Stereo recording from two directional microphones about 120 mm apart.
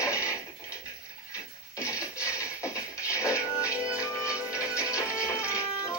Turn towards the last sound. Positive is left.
turn(degrees=25)  # may be behind; listen again after turning